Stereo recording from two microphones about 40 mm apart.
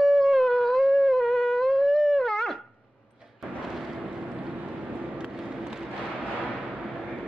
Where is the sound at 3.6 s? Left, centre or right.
Centre.